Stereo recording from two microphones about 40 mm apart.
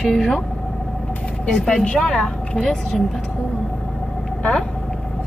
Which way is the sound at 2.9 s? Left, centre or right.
Centre.